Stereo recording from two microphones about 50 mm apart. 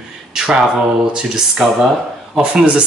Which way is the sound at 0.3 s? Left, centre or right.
Centre.